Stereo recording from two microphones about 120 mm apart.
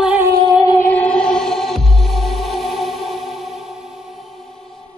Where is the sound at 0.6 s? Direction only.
25° left (ahead or behind).